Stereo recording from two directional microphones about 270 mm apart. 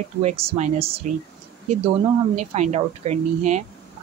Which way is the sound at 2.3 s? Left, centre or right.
Right.